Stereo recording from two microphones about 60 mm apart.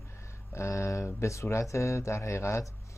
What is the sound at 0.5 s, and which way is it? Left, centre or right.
Speech, left.